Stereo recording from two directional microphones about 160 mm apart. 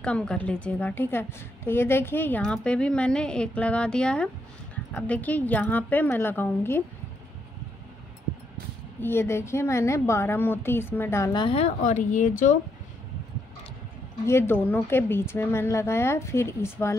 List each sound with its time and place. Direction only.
0.0 s a woman's voice: 5° left (ahead or behind)
9.0 s a woman's voice: 15° left (ahead or behind)
11.3 s speech: 35° left (ahead or behind)
11.8 s speech: 50° left (ahead or behind)
14.2 s a woman's voice: 15° left (ahead or behind)